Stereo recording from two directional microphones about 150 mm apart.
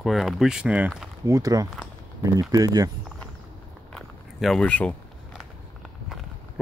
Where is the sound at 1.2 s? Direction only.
20° right (ahead or behind).